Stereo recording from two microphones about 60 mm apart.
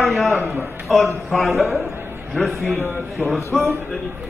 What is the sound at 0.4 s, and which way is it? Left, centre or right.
Speech, right.